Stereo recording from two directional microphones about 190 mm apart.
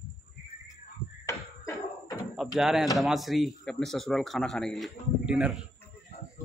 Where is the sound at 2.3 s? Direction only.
Centre (ahead or behind).